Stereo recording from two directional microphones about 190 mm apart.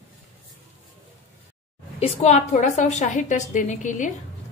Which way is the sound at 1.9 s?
35° left (ahead or behind).